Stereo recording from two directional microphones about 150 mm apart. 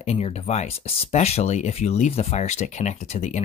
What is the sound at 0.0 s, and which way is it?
Speech, 45° left (ahead or behind).